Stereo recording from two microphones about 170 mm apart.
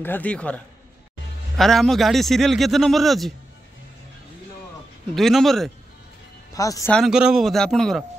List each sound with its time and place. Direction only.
0.0 s a man's voice: 10° left (ahead or behind)
1.6 s a man's voice: centre (ahead or behind)
5.1 s a man's voice: centre (ahead or behind)
6.5 s speech: 20° left (ahead or behind)
6.9 s a man's voice: centre (ahead or behind)